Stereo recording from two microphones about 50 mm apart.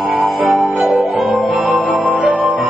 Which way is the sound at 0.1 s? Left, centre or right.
Centre.